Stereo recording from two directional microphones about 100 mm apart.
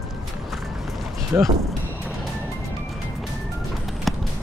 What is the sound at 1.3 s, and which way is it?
Speech, 20° right (ahead or behind).